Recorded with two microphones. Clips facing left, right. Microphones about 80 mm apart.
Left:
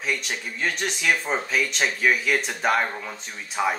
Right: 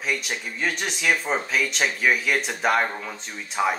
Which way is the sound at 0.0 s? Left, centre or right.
Centre.